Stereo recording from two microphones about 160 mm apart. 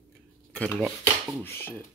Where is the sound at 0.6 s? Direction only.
10° left (ahead or behind).